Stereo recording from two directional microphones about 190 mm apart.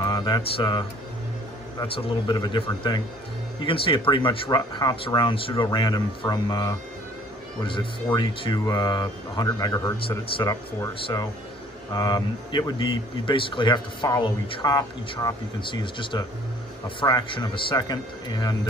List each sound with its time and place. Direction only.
0.0 s speech: 25° left (ahead or behind)
11.9 s speech: 25° left (ahead or behind)